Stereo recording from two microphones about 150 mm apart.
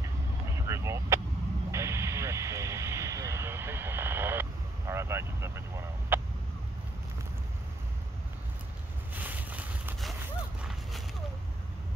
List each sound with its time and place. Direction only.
0.7 s vehicle: 20° right (ahead or behind)
9.1 s boat: 10° right (ahead or behind)
10.6 s a sound: centre (ahead or behind)